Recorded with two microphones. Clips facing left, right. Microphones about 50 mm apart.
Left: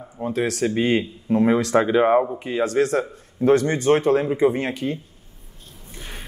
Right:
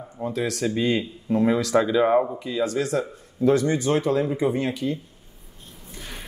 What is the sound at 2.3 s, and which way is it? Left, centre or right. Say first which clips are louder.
Speech: left 4 dB; left.